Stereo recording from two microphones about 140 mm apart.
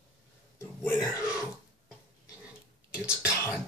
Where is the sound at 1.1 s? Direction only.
20° left (ahead or behind).